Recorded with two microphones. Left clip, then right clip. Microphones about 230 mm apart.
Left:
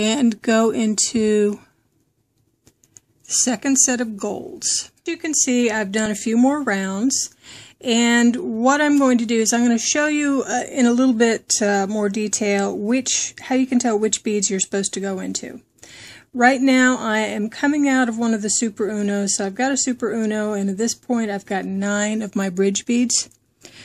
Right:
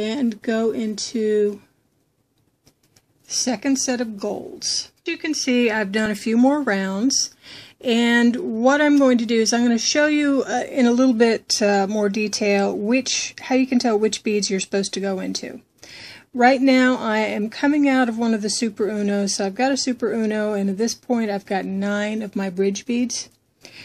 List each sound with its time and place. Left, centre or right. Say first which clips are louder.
0.0 s speech: left 4 dB; left
3.3 s a woman's voice: left 2 dB; centre